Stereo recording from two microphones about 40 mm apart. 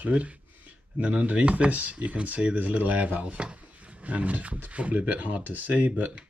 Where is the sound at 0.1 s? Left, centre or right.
Right.